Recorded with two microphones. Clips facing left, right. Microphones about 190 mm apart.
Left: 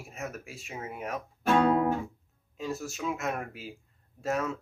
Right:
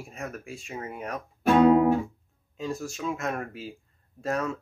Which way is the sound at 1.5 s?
10° right (ahead or behind).